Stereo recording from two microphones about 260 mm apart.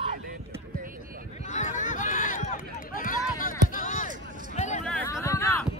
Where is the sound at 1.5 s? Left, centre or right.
Left.